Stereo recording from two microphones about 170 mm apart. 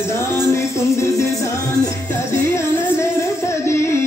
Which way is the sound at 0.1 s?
15° left (ahead or behind).